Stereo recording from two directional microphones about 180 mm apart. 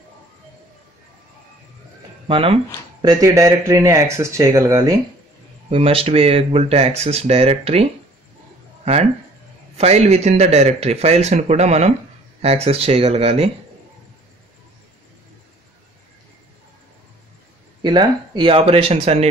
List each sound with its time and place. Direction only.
2.2 s speech: 30° right (ahead or behind)
5.7 s speech: 30° right (ahead or behind)
9.8 s speech: 35° right (ahead or behind)
17.8 s speech: 25° right (ahead or behind)